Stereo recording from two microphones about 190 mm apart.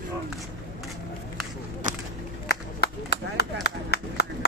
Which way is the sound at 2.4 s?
60° left (ahead or behind).